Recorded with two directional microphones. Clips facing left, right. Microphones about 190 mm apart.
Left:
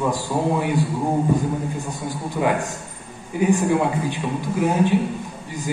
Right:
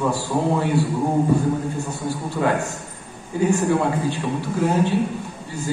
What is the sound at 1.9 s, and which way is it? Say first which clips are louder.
A man's voice: right 2 dB; 15° left (ahead or behind).